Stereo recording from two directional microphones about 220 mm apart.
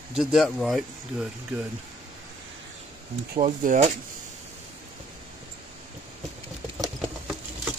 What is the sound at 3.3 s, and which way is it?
Speech, 35° right (ahead or behind).